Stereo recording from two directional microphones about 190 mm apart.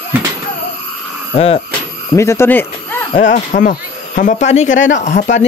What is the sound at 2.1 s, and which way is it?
Speech, 15° left (ahead or behind).